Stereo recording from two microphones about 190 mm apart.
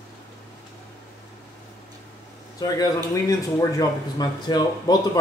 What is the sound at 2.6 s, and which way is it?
Speech, 15° left (ahead or behind).